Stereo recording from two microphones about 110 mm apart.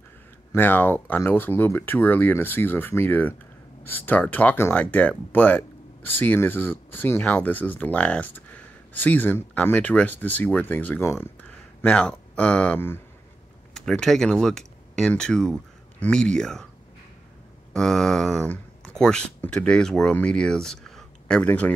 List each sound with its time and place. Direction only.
0.6 s speech: 15° left (ahead or behind)
13.7 s speech: 5° left (ahead or behind)
17.7 s speech: 5° left (ahead or behind)
18.5 s a sound: 5° left (ahead or behind)
19.4 s speech: 10° left (ahead or behind)